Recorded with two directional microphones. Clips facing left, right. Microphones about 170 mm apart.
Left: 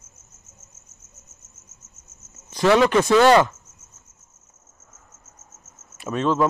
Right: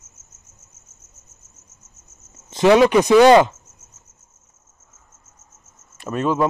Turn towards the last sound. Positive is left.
turn(degrees=-10)  # may be behind; listen again after turning